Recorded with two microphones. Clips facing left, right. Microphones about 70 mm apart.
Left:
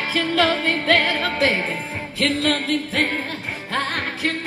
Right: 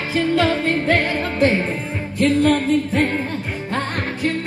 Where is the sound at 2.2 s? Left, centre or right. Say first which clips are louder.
Right 5 dB; left.